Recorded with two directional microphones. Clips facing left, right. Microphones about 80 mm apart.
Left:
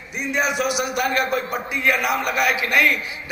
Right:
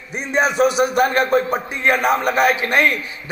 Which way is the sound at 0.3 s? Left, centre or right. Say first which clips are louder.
Right 6 dB; right.